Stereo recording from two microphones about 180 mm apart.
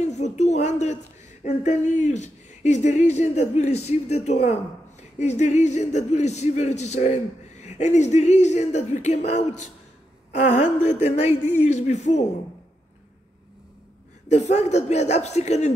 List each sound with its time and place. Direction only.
0.0 s speech: 40° left (ahead or behind)
14.3 s speech: 40° left (ahead or behind)